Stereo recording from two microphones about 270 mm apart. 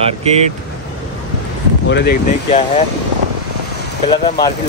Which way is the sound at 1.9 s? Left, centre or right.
Left.